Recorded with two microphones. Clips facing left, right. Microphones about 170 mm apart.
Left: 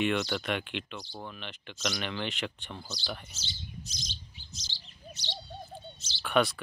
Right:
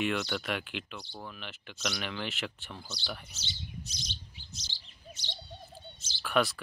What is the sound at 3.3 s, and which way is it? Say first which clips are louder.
Speech: right 1 dB; 60° right (ahead or behind).